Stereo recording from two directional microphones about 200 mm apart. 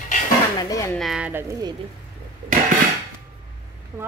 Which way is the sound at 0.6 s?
15° left (ahead or behind).